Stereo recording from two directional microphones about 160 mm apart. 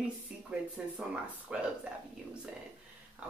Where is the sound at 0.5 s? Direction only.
10° right (ahead or behind).